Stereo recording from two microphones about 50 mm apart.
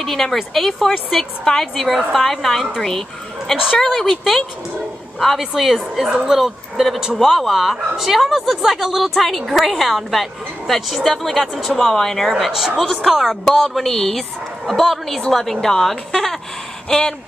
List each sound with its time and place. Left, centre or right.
0.0 s speech: centre
3.6 s speech: centre
5.2 s a woman's voice: centre